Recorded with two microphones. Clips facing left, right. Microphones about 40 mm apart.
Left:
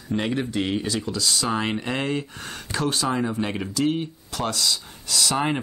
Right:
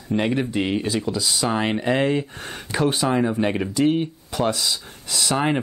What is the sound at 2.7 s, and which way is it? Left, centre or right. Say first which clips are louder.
Speech: right 4 dB; right.